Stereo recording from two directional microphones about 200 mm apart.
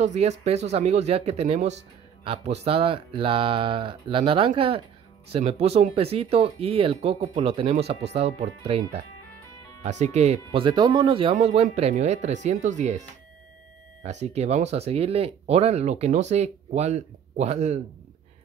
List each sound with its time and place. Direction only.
0.0 s speech: 35° right (ahead or behind)
14.0 s speech: 35° right (ahead or behind)